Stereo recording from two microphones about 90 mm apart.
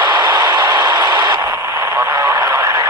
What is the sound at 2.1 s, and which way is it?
Radio, 40° right (ahead or behind).